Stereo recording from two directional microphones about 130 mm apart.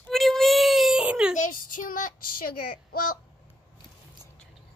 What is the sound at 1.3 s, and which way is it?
Speech, 80° left.